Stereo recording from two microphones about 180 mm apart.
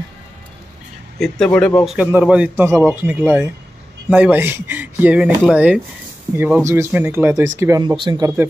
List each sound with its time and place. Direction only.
1.2 s speech: 5° left (ahead or behind)
1.9 s a man's voice: 10° right (ahead or behind)
7.8 s speech: 25° right (ahead or behind)